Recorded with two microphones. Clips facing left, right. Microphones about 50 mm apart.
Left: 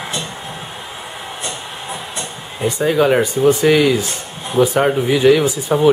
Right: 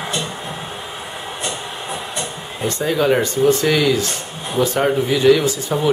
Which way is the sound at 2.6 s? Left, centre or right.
Centre.